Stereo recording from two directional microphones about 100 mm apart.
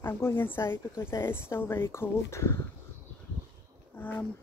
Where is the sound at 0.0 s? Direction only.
25° left (ahead or behind).